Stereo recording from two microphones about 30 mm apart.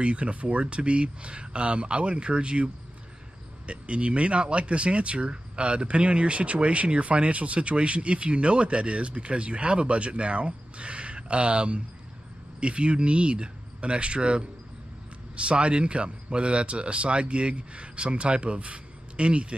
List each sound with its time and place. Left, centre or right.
0.0 s speech: right
0.7 s speech: right